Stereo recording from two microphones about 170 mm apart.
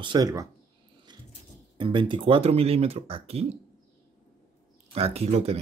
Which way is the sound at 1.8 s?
30° right (ahead or behind).